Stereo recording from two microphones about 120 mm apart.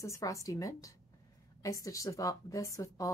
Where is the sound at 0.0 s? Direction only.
25° left (ahead or behind).